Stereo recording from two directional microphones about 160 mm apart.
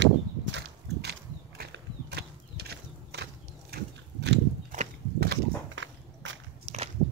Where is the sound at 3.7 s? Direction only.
90° right.